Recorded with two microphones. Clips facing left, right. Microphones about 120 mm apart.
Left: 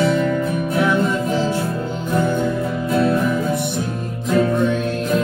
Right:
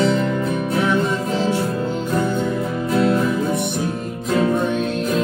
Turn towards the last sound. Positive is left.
turn(degrees=-25)  # may be behind; listen again after turning